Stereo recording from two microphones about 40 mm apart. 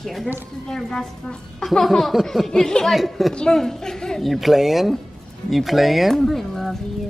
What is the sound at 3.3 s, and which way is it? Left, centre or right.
Speech, left.